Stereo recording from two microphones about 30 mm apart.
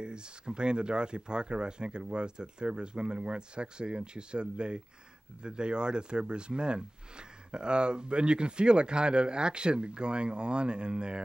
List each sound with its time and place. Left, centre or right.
0.0 s speech: right